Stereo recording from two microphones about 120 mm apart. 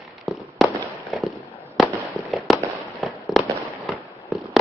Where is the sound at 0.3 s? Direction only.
Centre (ahead or behind).